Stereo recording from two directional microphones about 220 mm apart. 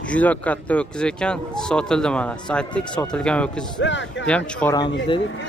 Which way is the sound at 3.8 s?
55° left (ahead or behind).